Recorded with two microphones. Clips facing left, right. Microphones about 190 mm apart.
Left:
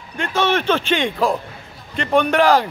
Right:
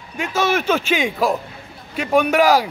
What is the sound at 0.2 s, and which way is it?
A man's voice, 5° right (ahead or behind).